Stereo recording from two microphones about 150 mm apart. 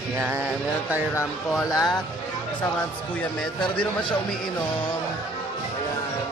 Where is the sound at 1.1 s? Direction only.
25° left (ahead or behind).